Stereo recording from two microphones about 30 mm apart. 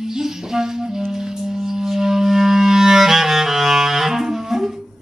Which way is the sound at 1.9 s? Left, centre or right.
Centre.